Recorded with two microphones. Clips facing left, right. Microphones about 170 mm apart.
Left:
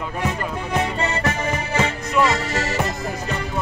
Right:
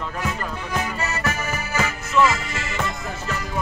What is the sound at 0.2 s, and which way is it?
Accordion, 30° left (ahead or behind).